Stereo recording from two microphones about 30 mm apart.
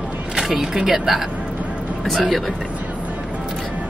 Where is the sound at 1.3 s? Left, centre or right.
Right.